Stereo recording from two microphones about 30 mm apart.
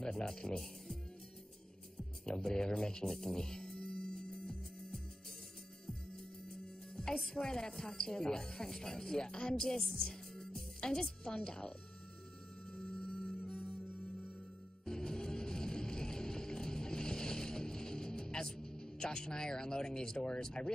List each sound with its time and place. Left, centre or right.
0.0 s speech: centre
2.0 s speech: left
3.1 s music: centre
6.5 s music: left
7.3 s speech: centre
12.7 s music: left
14.9 s music: left